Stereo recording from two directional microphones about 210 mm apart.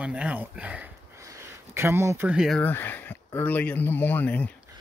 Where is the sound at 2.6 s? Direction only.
10° left (ahead or behind).